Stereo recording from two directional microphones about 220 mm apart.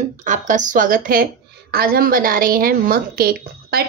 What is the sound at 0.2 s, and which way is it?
A woman's voice, 35° right (ahead or behind).